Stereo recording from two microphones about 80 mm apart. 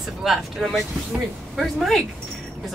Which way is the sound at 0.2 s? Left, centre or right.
Centre.